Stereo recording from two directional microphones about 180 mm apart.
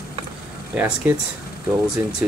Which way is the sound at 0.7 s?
10° right (ahead or behind).